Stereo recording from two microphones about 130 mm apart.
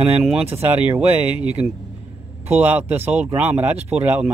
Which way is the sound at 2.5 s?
10° right (ahead or behind).